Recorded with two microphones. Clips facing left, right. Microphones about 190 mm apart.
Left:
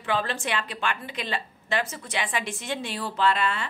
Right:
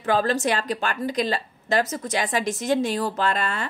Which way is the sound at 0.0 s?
40° right (ahead or behind).